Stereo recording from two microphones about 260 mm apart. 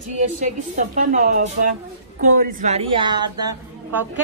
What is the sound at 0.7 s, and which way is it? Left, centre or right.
Speech, right.